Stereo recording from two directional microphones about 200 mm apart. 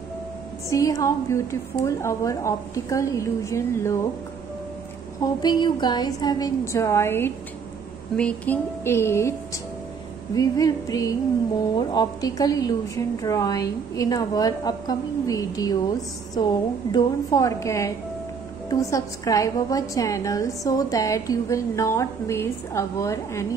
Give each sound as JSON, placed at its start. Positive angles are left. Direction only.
{"t": 0.7, "sound": "a woman's voice", "side_deg": 15}
{"t": 5.2, "sound": "a woman's voice", "side_deg": 20}
{"t": 10.3, "sound": "a woman's voice", "side_deg": 20}
{"t": 16.9, "sound": "a woman's voice", "side_deg": 15}